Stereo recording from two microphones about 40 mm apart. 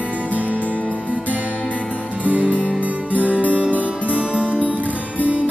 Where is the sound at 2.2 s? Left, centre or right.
Right.